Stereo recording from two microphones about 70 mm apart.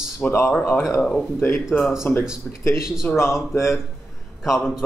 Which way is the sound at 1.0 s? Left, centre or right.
Centre.